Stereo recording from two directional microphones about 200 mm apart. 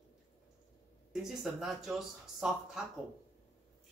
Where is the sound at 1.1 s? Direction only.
Centre (ahead or behind).